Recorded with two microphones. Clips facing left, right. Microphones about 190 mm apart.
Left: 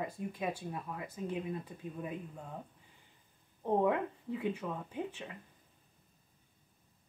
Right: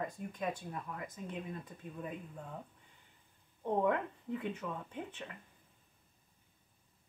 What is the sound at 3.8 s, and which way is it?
A woman's voice, 10° left (ahead or behind).